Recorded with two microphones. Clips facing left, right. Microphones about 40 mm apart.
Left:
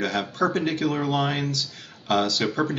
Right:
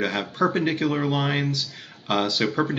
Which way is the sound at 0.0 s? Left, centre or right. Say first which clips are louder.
Right 1 dB; centre.